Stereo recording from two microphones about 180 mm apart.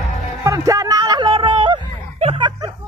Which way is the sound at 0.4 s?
20° right (ahead or behind).